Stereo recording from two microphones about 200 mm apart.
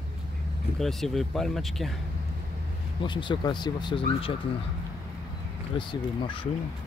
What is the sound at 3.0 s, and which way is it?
Speech, 25° left (ahead or behind).